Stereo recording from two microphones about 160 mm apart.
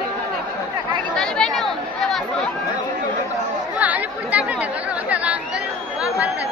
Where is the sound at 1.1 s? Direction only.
5° left (ahead or behind).